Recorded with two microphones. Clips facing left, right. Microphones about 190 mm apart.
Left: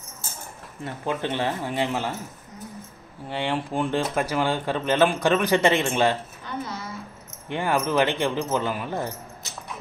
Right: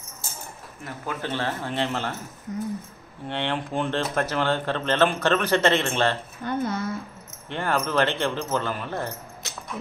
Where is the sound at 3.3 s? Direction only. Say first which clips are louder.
Left 1 dB; 10° left (ahead or behind).